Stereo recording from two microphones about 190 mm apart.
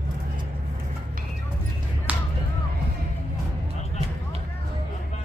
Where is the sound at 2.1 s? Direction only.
10° right (ahead or behind).